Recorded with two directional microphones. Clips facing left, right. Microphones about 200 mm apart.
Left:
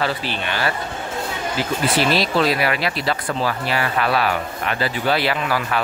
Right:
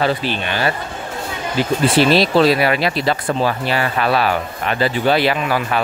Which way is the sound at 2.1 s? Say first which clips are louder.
Right 5 dB; 30° right (ahead or behind).